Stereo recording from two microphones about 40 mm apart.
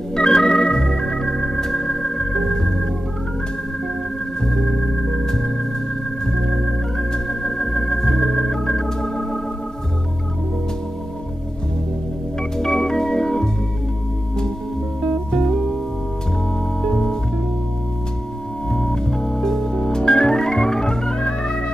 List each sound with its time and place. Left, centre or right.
0.1 s organ: centre
4.4 s organ: centre
12.4 s organ: centre
16.8 s music: centre
18.7 s organ: centre